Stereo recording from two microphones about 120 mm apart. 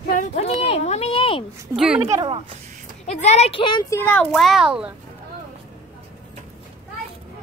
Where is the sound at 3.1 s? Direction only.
65° left (ahead or behind); by 3.8 s 45° left (ahead or behind).